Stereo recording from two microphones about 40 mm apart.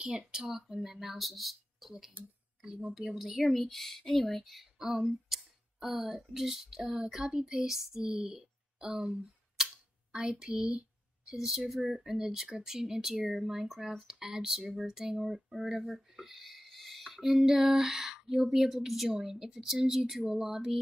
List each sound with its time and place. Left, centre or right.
0.3 s speech: centre
3.5 s speech: centre
7.7 s speech: centre; by 9.2 s right
9.6 s a sound: centre
10.1 s a woman's voice: right
11.3 s speech: centre